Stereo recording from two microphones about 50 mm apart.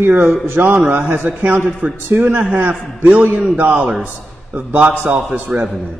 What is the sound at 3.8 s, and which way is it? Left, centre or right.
Speech, right.